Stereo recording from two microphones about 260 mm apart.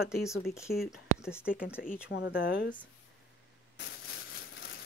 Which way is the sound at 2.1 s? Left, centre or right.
Left.